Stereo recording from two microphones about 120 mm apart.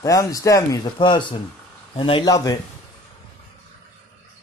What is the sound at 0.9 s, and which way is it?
Speech, 40° left (ahead or behind).